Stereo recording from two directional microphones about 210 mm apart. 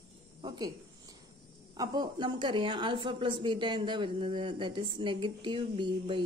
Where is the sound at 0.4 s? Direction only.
20° right (ahead or behind).